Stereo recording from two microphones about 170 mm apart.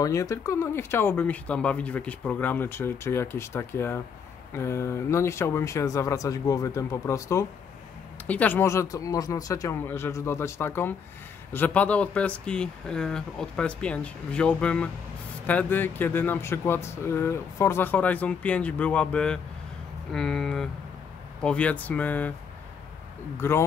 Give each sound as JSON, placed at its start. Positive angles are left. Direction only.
{"t": 0.0, "sound": "speech", "side_deg": 20}
{"t": 23.4, "sound": "speech", "side_deg": 15}